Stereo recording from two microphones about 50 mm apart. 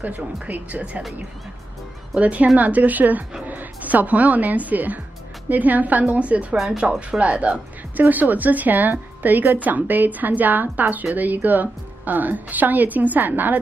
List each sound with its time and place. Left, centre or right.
0.0 s a woman's voice: right
2.1 s a woman's voice: right
6.5 s speech: centre
7.0 s a woman's voice: right